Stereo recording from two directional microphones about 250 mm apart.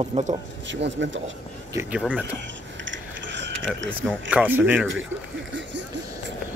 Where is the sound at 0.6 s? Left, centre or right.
Right.